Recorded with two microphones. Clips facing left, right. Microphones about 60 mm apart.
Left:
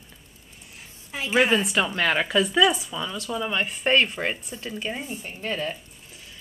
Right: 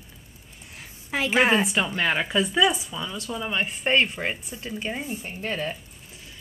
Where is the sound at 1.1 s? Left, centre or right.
Right.